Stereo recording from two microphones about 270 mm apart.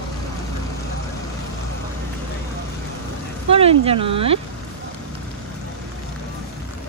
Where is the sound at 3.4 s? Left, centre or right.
Right.